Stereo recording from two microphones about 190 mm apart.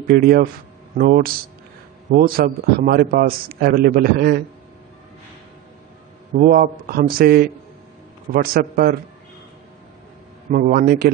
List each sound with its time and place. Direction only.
0.1 s a man's voice: 50° right (ahead or behind)
6.3 s a man's voice: 50° right (ahead or behind)
10.5 s a man's voice: 50° right (ahead or behind)